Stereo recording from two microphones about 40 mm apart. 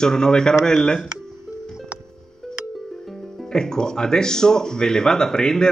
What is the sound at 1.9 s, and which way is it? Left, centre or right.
Music, right.